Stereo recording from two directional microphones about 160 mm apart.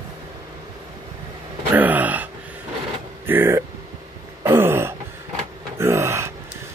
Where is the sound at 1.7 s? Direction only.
10° right (ahead or behind).